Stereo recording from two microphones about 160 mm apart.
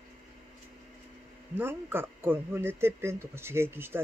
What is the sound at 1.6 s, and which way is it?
Speech, 15° right (ahead or behind).